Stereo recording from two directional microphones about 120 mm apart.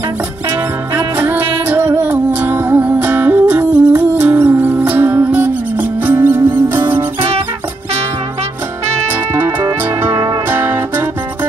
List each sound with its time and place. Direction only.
0.9 s music: 15° right (ahead or behind)
9.3 s music: 15° right (ahead or behind)